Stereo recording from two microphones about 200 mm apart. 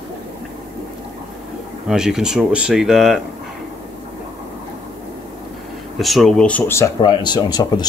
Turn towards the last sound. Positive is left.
turn(degrees=20)  # may be behind; listen again after turning